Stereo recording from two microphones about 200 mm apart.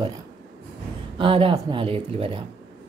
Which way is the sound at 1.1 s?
25° right (ahead or behind).